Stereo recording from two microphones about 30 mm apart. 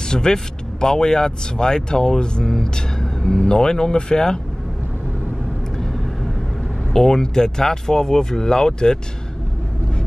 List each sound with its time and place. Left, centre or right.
0.1 s speech: left
6.9 s speech: centre